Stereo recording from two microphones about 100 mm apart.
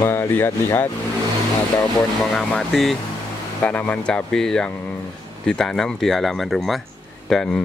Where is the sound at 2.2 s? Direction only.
5° left (ahead or behind).